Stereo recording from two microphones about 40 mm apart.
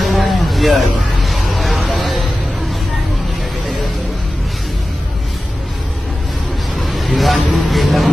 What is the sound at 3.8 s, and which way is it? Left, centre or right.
Music, centre.